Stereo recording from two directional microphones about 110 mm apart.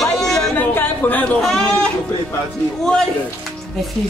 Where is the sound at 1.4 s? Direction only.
Centre (ahead or behind).